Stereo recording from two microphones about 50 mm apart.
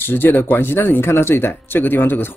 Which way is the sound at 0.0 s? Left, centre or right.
Left.